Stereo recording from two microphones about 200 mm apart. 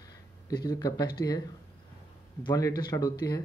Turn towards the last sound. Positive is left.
turn(degrees=20)  # may be behind; listen again after turning